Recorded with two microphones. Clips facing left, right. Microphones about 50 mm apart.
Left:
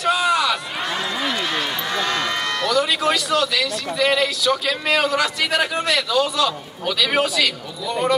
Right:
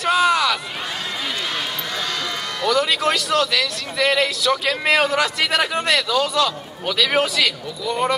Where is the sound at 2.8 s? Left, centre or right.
Right.